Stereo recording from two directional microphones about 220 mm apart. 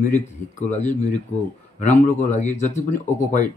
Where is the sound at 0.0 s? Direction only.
35° left (ahead or behind).